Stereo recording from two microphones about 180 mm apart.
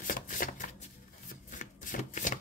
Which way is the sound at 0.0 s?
45° left (ahead or behind).